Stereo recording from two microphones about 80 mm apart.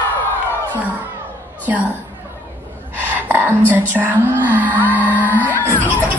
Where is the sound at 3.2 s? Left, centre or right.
Right.